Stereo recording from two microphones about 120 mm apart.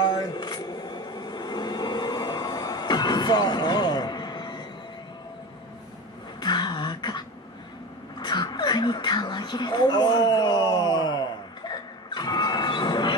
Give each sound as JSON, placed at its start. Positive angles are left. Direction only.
{"t": 0.0, "sound": "music", "side_deg": 35}
{"t": 6.4, "sound": "beatboxing", "side_deg": 40}
{"t": 8.2, "sound": "a sound", "side_deg": 35}